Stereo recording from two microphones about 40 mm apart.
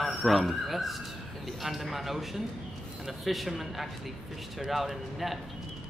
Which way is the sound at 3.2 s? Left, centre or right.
Centre.